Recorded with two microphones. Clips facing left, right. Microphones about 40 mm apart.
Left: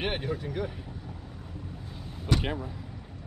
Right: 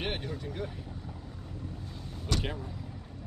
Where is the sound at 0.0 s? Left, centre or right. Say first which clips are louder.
Left 4 dB; centre.